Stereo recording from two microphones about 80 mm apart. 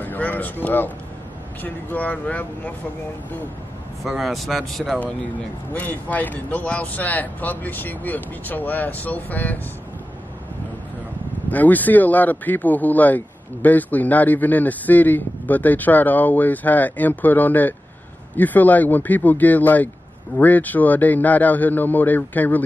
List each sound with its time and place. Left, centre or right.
0.0 s a sound: left
1.6 s speech: left
4.0 s speech: centre
5.7 s speech: left
11.4 s speech: left